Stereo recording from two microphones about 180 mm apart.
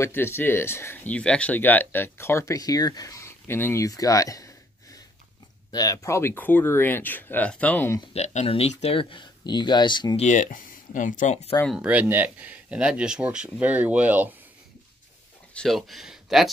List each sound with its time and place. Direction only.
0.0 s speech: 15° left (ahead or behind)
8.1 s speech: 40° left (ahead or behind)
10.2 s speech: 45° left (ahead or behind)
11.6 s speech: 5° right (ahead or behind)
15.5 s speech: centre (ahead or behind)